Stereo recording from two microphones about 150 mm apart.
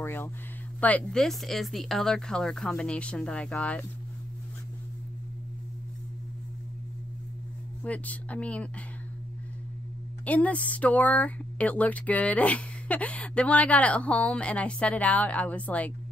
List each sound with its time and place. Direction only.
0.0 s speech: 15° left (ahead or behind)
7.8 s speech: 10° left (ahead or behind)
10.2 s speech: 10° left (ahead or behind)